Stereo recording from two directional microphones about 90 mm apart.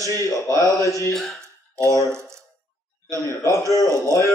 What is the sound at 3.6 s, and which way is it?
Speech, 40° left (ahead or behind).